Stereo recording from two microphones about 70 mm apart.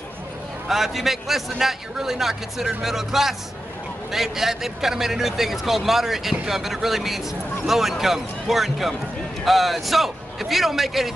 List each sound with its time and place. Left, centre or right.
0.7 s a man's voice: centre